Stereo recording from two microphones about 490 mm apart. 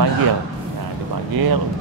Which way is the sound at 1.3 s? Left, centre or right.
Right.